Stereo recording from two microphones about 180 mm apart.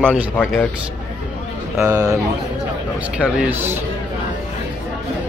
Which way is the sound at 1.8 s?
15° right (ahead or behind).